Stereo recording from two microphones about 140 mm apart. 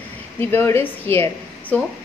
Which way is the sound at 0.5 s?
15° left (ahead or behind).